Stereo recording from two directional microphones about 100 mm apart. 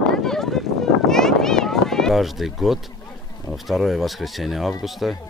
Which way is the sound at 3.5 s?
Centre (ahead or behind).